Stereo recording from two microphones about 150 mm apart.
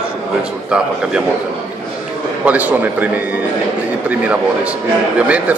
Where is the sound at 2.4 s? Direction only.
10° right (ahead or behind).